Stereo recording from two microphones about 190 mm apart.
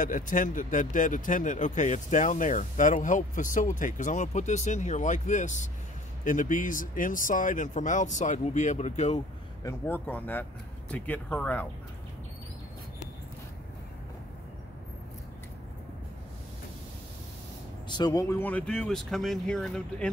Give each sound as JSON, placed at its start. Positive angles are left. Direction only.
{"t": 0.0, "sound": "speech", "side_deg": 45}
{"t": 9.6, "sound": "speech", "side_deg": 15}
{"t": 17.8, "sound": "speech", "side_deg": 20}